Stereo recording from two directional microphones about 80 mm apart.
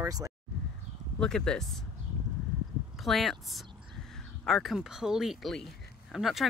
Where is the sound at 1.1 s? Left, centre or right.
Centre.